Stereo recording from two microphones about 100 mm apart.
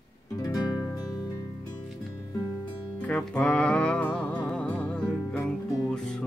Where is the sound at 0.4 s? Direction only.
40° left (ahead or behind).